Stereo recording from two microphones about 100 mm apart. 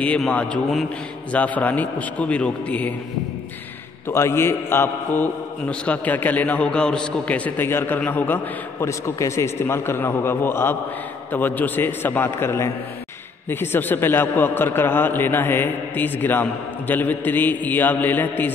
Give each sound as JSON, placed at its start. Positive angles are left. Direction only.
{"t": 0.3, "sound": "a man's voice", "side_deg": 15}
{"t": 4.1, "sound": "a man's voice", "side_deg": 25}